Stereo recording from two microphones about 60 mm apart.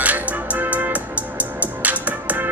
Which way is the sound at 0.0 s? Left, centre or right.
Right.